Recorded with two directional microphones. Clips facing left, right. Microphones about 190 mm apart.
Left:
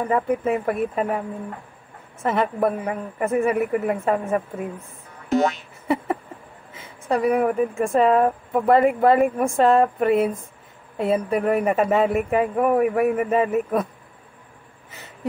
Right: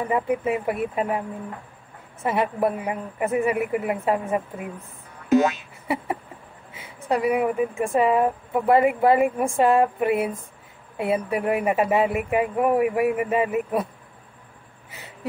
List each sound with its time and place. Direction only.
0.0 s speech: 10° right (ahead or behind)
2.2 s speech: 10° right (ahead or behind)
6.7 s speech: 10° right (ahead or behind)